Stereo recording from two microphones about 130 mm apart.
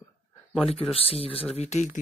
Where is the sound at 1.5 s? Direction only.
60° left (ahead or behind).